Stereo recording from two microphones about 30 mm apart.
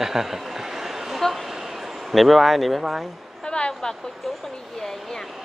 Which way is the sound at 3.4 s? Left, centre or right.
Left.